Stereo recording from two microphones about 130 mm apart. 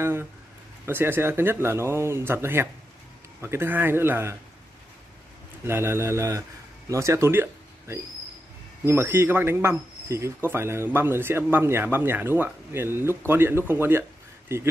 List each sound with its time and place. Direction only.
0.0 s speech: 20° right (ahead or behind)
5.7 s a man's voice: 20° right (ahead or behind)
8.8 s a man's voice: 20° right (ahead or behind)